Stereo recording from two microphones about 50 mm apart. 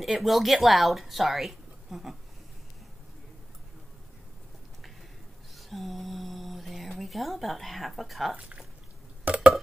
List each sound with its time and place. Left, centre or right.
0.0 s speech: centre
5.6 s a sound: centre
8.4 s speech: right
9.2 s burping: right